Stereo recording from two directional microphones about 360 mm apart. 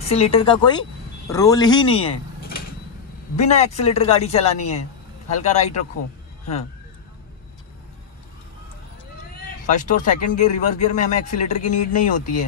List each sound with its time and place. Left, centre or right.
0.0 s speech: centre
3.3 s speech: centre
9.7 s speech: left